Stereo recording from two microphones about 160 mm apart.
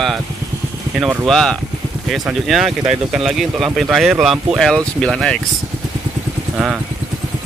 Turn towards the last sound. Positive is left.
turn(degrees=-5)  # may be behind; listen again after turning